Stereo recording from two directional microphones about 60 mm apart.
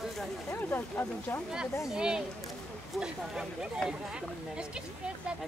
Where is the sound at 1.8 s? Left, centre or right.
Centre.